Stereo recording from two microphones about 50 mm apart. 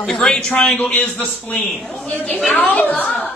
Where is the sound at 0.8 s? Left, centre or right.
Left.